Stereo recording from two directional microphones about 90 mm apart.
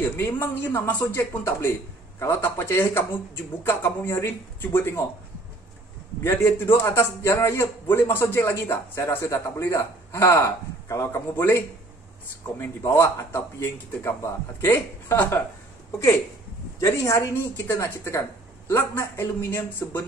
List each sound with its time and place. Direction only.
0.1 s a man's voice: 25° left (ahead or behind)
6.2 s a man's voice: 25° left (ahead or behind)
16.8 s a woman's voice: 35° left (ahead or behind)